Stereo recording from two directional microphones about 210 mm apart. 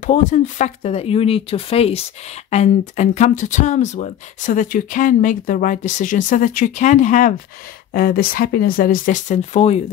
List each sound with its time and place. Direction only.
0.0 s speech: 35° left (ahead or behind)